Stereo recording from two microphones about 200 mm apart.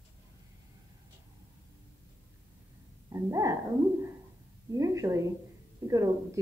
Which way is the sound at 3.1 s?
15° right (ahead or behind).